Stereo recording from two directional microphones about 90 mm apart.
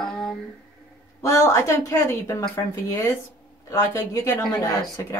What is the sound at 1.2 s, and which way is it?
A woman's voice, 35° left (ahead or behind).